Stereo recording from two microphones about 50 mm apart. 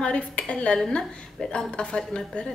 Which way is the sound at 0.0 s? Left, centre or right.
Left.